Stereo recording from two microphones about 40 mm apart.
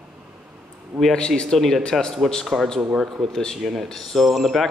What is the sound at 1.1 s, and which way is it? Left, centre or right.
Speech, left.